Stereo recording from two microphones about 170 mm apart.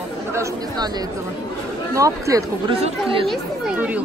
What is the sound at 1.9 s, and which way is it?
Speech, 20° right (ahead or behind).